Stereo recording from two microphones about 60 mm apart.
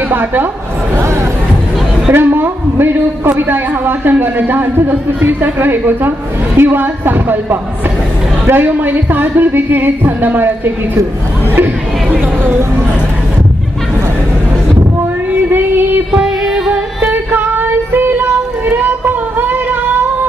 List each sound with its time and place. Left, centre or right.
0.1 s a man's voice: right
2.1 s a sound: right
3.3 s a man's voice: right
8.5 s a man's voice: right
15.3 s child singing: right
16.1 s music: centre
17.0 s child singing: right